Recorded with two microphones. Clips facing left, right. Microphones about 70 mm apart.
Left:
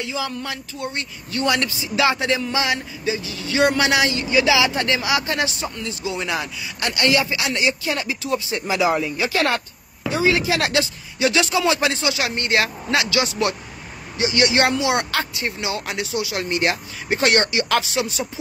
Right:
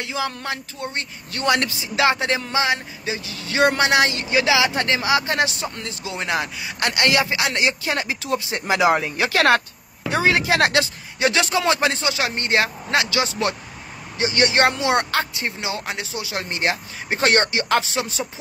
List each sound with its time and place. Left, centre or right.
0.1 s speech: right
10.1 s speech: right